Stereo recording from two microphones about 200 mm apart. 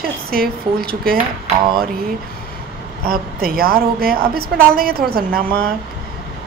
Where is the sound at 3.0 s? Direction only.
45° right (ahead or behind).